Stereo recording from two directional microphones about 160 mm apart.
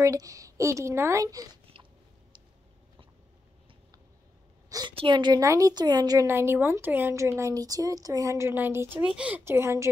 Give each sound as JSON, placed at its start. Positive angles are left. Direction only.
{"t": 0.0, "sound": "speech", "side_deg": -20}
{"t": 4.6, "sound": "a sound", "side_deg": -25}
{"t": 4.9, "sound": "speech", "side_deg": -30}